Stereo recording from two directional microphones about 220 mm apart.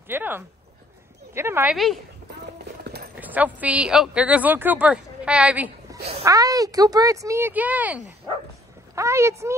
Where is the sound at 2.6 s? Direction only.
50° right (ahead or behind).